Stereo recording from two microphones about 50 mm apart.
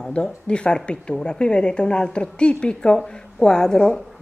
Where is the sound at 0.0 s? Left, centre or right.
Centre.